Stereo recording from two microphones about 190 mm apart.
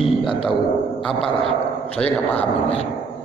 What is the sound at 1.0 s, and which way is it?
Speech, 5° left (ahead or behind).